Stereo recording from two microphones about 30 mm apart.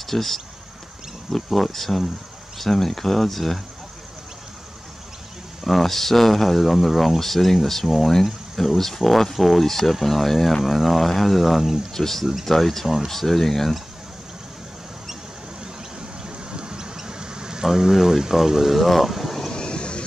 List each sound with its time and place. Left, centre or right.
0.0 s speech: centre
5.6 s speech: centre
11.9 s speech: centre
12.8 s speech: centre
13.1 s speech: centre
16.3 s a sound: right
17.7 s speech: centre
19.5 s vehicle: left